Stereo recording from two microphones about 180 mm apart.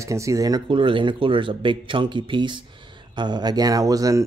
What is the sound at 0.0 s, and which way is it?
Speech, 15° right (ahead or behind).